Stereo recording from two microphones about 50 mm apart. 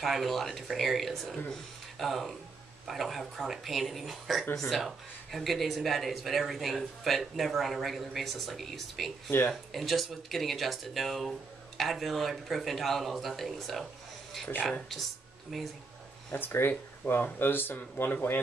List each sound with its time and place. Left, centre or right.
0.0 s speech: centre
16.3 s speech: left